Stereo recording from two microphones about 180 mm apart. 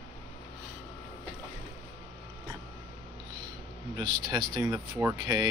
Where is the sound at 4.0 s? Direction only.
25° right (ahead or behind).